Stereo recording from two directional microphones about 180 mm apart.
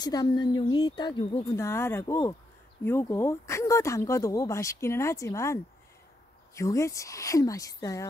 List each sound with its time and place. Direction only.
0.0 s speech: 20° left (ahead or behind)